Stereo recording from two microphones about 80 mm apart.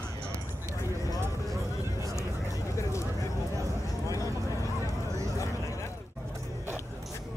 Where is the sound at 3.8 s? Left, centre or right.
Left.